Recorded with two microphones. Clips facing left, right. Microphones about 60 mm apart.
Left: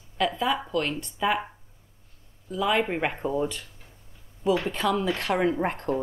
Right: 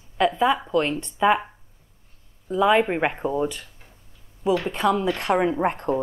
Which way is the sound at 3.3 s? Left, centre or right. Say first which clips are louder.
Right 3 dB; centre.